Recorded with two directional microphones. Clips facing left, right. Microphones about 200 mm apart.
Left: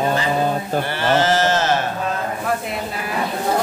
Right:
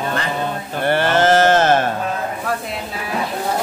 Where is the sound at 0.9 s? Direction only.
55° right (ahead or behind).